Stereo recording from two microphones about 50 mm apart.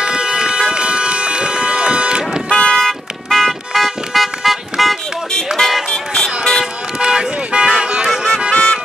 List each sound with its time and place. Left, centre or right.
0.0 s vehicle: centre
2.5 s car alarm: centre
5.6 s music: centre
6.2 s vehicle: centre
6.6 s vehicle: centre
7.6 s music: centre
8.5 s music: left